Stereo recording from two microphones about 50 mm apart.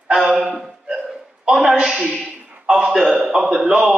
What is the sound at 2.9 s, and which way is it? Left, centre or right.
A man's voice, centre.